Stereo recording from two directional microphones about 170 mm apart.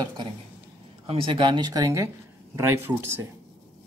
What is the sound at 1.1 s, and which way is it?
A woman's voice, 30° right (ahead or behind).